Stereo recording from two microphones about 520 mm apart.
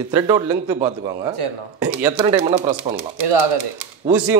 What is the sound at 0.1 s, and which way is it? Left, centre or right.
A man's voice, centre.